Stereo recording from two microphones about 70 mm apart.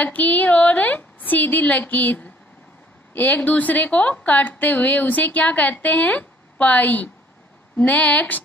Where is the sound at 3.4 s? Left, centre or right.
Left.